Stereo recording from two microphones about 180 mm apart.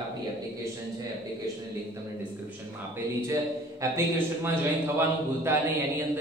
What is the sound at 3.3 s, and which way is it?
A man's voice, 15° right (ahead or behind).